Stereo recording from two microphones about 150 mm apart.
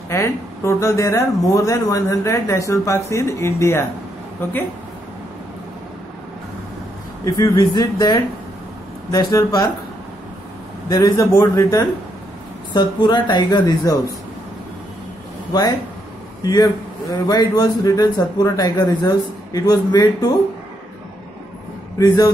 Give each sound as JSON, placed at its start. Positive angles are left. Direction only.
{"t": 0.1, "sound": "speech", "side_deg": 20}
{"t": 7.2, "sound": "speech", "side_deg": 20}
{"t": 10.9, "sound": "speech", "side_deg": 20}
{"t": 17.3, "sound": "speech", "side_deg": 25}
{"t": 21.9, "sound": "a man's voice", "side_deg": 25}